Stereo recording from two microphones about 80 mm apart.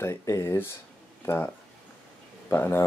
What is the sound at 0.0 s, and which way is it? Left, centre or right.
Speech, left.